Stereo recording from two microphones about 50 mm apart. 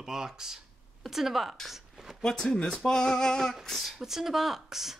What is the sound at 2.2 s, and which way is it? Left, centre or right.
Male singing, centre.